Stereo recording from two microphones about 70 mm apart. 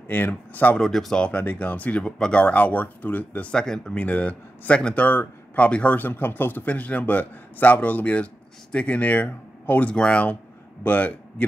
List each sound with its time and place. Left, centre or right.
0.1 s speech: left
0.7 s speech: centre
1.3 s speech: left; by 2.4 s centre
2.4 s speech: left